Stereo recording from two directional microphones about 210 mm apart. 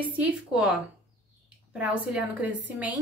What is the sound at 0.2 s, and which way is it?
Speech, 5° right (ahead or behind).